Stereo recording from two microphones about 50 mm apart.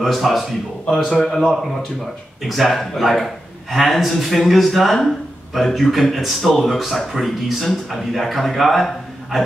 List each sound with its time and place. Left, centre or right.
0.0 s a man's voice: centre
0.8 s speech: centre
1.4 s a man's voice: centre